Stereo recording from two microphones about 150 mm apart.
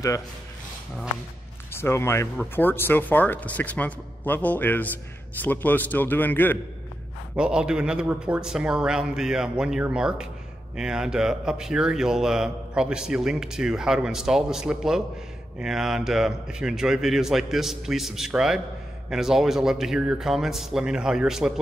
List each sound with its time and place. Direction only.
1.7 s speech: 15° left (ahead or behind)
7.3 s a man's voice: 5° right (ahead or behind)